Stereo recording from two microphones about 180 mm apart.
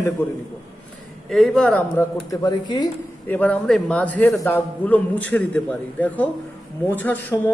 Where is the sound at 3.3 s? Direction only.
10° left (ahead or behind).